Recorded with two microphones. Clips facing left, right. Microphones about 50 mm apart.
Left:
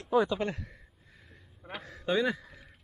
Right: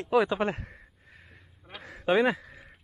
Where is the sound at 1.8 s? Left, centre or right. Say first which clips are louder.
Right 5 dB; right.